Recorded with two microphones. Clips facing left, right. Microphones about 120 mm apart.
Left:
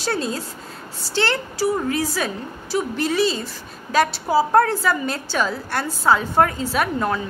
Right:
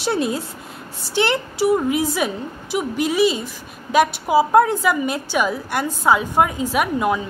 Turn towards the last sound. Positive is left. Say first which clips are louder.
# right 2 dB
turn(degrees=-10)  # may be behind; listen again after turning